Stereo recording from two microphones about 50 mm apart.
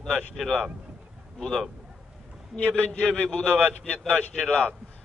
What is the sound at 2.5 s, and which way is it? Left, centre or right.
A man's voice, left.